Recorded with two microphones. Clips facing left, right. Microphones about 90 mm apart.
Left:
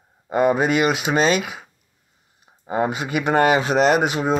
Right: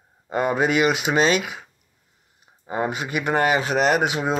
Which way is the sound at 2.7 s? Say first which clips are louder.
Left 3 dB; 5° left (ahead or behind).